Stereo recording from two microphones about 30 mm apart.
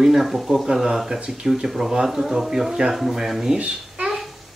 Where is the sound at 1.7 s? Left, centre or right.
Centre.